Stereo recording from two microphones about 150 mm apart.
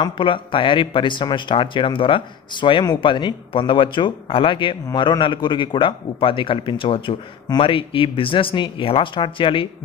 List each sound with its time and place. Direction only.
0.0 s speech: 35° left (ahead or behind)